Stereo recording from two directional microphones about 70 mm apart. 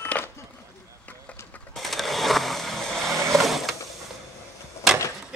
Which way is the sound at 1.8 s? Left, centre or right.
Centre.